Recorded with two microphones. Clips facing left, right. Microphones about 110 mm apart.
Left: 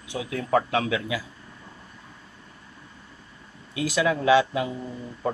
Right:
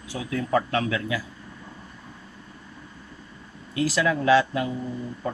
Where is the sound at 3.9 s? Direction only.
15° left (ahead or behind).